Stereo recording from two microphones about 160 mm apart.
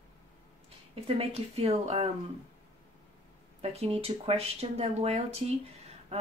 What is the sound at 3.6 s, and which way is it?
Speech, 40° right (ahead or behind).